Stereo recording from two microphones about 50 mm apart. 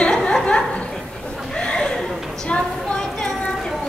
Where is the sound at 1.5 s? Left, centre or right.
Centre.